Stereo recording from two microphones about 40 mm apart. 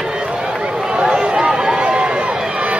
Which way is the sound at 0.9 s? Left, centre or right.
Right.